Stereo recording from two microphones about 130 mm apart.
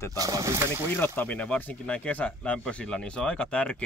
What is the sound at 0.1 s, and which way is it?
Speech, 30° right (ahead or behind).